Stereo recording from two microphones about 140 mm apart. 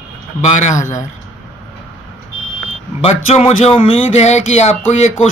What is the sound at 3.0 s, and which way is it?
Speech, 50° left (ahead or behind).